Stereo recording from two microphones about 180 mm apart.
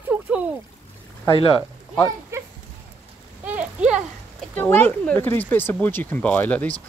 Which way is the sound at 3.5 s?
5° right (ahead or behind).